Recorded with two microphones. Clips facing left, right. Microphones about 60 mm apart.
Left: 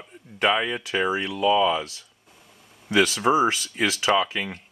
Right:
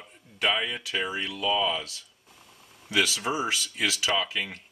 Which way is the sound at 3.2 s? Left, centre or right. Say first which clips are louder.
Left 9 dB; left.